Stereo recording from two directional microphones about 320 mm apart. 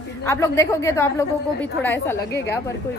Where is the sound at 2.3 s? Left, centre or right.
Left.